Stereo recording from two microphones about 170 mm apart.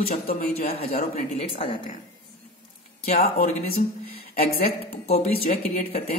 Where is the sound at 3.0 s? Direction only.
55° left (ahead or behind).